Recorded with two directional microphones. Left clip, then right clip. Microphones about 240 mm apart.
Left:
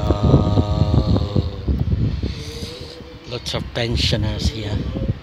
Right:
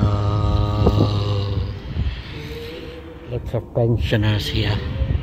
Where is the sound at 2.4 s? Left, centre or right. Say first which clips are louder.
Even; left.